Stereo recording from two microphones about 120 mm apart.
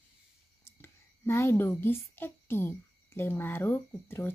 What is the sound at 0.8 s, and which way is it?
A woman's voice, 20° left (ahead or behind).